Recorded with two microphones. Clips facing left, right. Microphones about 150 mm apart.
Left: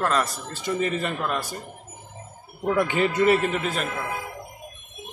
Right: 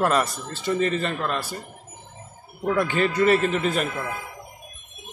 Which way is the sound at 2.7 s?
20° left (ahead or behind).